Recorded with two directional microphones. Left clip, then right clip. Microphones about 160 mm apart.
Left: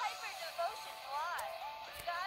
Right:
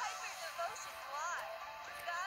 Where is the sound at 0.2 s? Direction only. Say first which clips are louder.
Left 2 dB; 10° right (ahead or behind).